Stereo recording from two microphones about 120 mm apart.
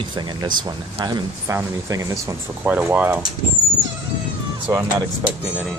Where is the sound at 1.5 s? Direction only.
25° right (ahead or behind).